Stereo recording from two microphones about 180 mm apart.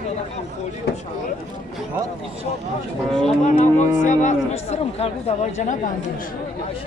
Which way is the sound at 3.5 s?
40° left (ahead or behind).